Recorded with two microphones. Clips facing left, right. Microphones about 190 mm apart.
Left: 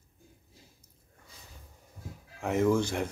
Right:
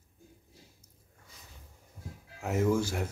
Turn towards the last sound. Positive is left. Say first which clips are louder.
# left 2 dB
turn(degrees=-5)  # may be behind; listen again after turning